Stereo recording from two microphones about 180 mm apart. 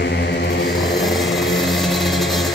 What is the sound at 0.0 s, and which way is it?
Vehicle, 65° left (ahead or behind).